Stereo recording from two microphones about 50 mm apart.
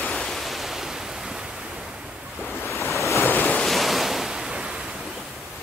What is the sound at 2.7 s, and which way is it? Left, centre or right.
Waves, left.